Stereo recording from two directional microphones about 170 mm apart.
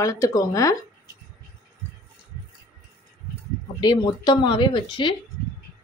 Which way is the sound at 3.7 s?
25° left (ahead or behind).